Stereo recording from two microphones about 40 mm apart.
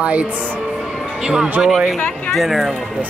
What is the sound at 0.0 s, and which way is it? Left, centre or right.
Speech, right.